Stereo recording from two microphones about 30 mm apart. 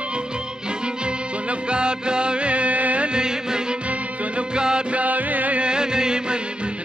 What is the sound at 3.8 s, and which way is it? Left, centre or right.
Music, right.